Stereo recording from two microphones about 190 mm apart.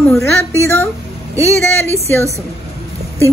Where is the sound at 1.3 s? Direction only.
15° right (ahead or behind).